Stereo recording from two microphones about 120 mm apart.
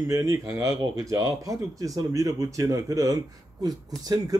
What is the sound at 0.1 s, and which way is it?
Speech, 25° right (ahead or behind).